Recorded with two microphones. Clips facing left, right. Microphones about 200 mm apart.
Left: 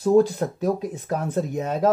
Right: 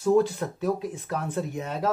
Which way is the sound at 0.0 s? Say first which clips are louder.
Left 4 dB; 35° left (ahead or behind).